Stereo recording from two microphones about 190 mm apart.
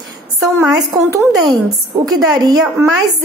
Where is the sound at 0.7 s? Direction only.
15° right (ahead or behind).